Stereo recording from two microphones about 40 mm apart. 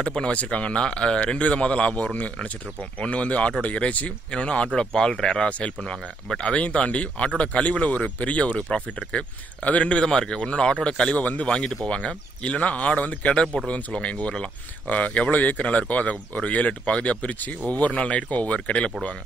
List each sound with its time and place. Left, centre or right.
0.0 s a man's voice: left
6.5 s speech: left
10.0 s a man's voice: centre
11.1 s speech: left
11.4 s speech: centre
13.7 s speech: left